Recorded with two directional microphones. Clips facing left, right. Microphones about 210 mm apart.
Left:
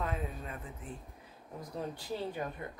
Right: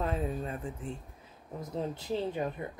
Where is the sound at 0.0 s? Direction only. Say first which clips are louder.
Right 5 dB; 30° right (ahead or behind).